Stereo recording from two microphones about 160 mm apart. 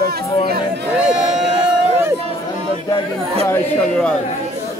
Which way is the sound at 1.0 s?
5° right (ahead or behind).